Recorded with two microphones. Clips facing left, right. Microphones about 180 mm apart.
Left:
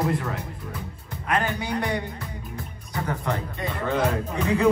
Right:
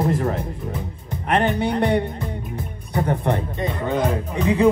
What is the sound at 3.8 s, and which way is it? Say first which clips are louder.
Music: right 1 dB; 15° right (ahead or behind).